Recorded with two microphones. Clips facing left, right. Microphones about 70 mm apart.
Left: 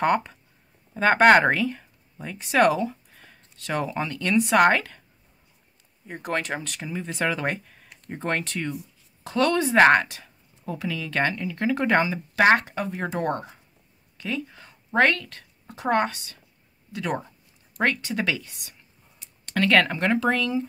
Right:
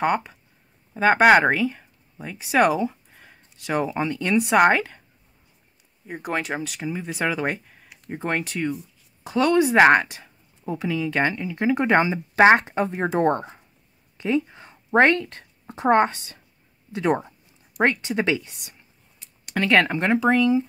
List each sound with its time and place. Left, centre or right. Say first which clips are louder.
0.0 s speech: even; centre
6.0 s speech: right 1 dB; centre; by 18.8 s right
19.4 s speech: right 1 dB; centre